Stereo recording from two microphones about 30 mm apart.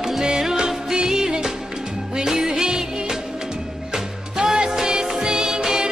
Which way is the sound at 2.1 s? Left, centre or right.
Centre.